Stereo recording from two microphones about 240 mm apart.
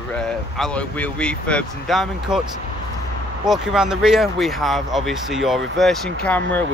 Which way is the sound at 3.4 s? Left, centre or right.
Centre.